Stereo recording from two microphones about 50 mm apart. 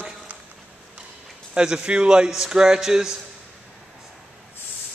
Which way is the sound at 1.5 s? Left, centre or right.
Centre.